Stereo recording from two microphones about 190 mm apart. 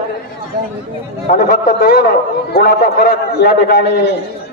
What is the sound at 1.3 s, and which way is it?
A man's voice, 45° left (ahead or behind).